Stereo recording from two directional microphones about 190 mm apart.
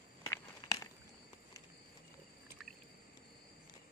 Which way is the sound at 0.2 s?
15° left (ahead or behind).